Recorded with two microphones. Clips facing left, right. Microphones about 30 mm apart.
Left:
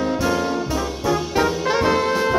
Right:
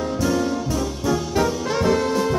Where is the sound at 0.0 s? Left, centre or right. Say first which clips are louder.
Left 1 dB; left.